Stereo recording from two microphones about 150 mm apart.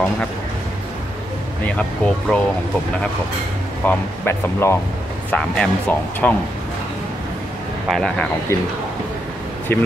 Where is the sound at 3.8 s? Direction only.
15° left (ahead or behind).